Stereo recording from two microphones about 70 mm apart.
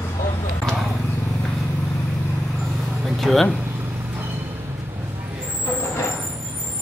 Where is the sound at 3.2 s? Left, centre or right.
Centre.